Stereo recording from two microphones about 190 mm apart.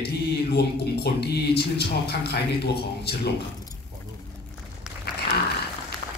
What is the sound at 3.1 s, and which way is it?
Speech, 55° left (ahead or behind).